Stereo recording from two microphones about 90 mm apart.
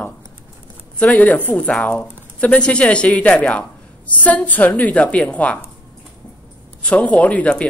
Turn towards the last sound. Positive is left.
turn(degrees=15)  # may be behind; listen again after turning